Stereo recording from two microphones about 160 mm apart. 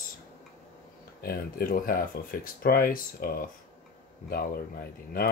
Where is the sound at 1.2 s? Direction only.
65° left (ahead or behind).